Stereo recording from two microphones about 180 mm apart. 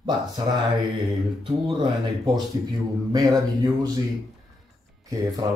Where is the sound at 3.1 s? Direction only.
20° right (ahead or behind).